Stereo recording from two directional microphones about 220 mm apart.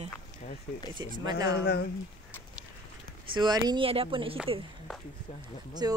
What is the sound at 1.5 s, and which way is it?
Speech, 45° left (ahead or behind).